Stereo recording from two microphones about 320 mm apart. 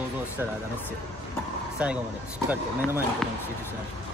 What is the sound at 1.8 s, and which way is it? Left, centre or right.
Speech, centre.